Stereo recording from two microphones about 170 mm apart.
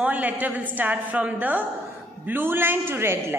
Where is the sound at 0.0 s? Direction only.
10° right (ahead or behind).